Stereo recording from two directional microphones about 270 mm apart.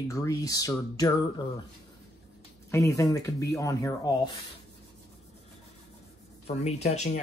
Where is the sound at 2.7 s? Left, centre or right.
Centre.